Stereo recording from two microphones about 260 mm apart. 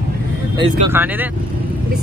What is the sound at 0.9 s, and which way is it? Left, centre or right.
Speech, centre.